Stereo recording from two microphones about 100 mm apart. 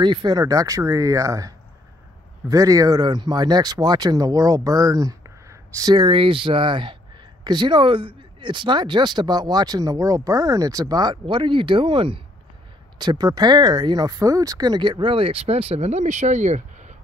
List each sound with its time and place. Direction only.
0.0 s speech: 50° right (ahead or behind)
5.9 s speech: 60° right (ahead or behind)
13.0 s speech: 45° right (ahead or behind); by 16.4 s 90° right